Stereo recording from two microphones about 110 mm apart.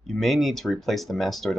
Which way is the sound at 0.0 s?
Centre (ahead or behind).